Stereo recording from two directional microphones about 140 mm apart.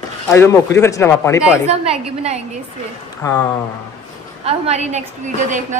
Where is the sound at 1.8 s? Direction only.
45° right (ahead or behind).